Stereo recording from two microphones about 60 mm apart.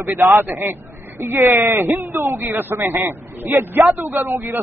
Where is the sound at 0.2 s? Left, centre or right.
Right.